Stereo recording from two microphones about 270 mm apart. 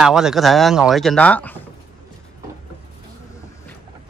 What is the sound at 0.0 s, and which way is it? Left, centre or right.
Speech, centre.